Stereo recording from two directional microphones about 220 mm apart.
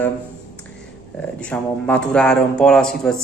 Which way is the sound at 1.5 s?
5° left (ahead or behind).